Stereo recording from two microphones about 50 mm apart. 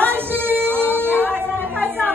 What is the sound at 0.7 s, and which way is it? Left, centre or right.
Music, left.